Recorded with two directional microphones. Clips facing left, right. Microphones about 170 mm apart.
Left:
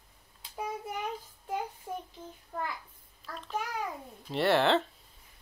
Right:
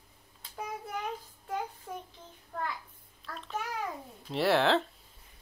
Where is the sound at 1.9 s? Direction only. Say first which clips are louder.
Left 3 dB; 20° left (ahead or behind).